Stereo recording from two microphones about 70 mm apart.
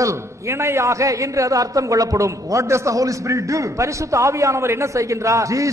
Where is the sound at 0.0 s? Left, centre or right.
Right.